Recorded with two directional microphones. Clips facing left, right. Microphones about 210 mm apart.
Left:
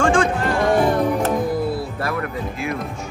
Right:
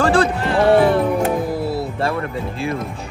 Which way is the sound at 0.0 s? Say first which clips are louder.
Right 2 dB; 35° right (ahead or behind).